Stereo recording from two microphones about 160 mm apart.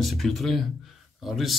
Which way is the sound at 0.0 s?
Centre (ahead or behind).